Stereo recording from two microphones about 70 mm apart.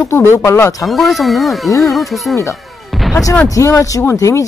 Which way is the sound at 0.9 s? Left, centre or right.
Centre.